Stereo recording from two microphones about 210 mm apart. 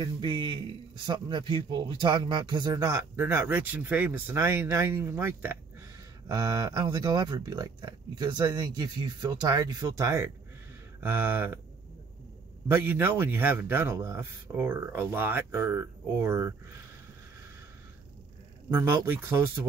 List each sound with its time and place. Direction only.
0.0 s a man's voice: 20° right (ahead or behind)
12.6 s a man's voice: 10° right (ahead or behind)
18.7 s a man's voice: 10° right (ahead or behind)